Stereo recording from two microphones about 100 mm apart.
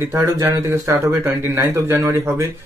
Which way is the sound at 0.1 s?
30° right (ahead or behind).